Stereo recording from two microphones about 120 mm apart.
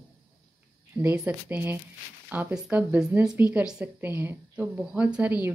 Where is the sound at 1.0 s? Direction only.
15° right (ahead or behind).